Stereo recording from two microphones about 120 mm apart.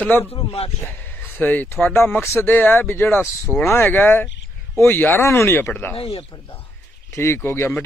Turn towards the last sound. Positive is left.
turn(degrees=20)  # may be behind; listen again after turning